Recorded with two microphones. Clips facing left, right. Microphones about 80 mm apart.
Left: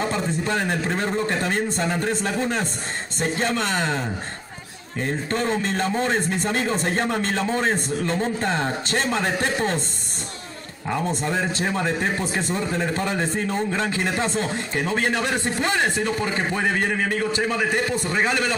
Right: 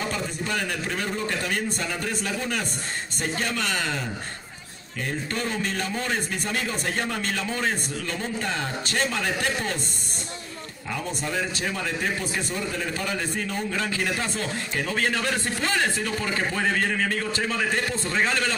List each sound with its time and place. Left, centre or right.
0.0 s speech: left
10.9 s speech: left; by 18.5 s centre